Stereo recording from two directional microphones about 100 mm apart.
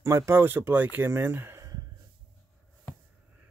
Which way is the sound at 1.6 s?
35° right (ahead or behind).